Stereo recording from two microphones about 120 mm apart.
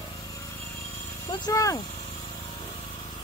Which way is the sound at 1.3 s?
30° left (ahead or behind).